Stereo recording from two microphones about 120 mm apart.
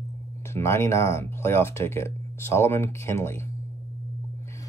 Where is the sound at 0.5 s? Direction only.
20° left (ahead or behind).